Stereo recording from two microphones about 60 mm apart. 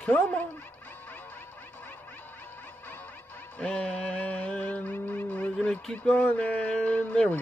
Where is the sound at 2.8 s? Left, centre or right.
Left.